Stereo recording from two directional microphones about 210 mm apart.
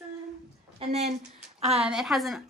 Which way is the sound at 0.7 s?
30° right (ahead or behind).